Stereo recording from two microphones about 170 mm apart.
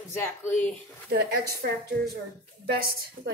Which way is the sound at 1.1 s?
65° right (ahead or behind).